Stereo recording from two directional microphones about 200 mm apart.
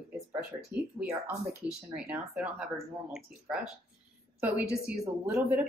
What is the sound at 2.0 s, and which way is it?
Speech, 5° right (ahead or behind).